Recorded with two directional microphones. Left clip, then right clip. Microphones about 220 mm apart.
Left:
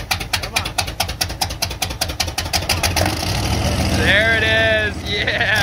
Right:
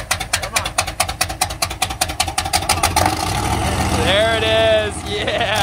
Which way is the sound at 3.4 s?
30° right (ahead or behind).